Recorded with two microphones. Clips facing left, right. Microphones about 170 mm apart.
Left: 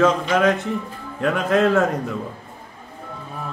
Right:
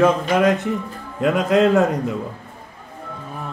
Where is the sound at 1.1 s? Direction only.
20° right (ahead or behind).